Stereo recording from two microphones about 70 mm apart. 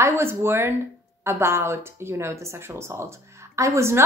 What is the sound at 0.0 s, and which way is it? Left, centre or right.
A woman's voice, right.